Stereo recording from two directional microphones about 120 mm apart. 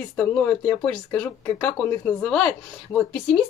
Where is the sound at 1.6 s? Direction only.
10° left (ahead or behind).